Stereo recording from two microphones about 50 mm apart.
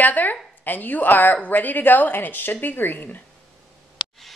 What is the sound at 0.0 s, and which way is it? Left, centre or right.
A woman's voice, left.